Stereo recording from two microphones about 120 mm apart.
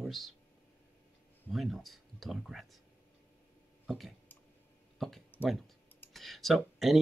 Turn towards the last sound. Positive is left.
turn(degrees=0)  # may be behind; listen again after turning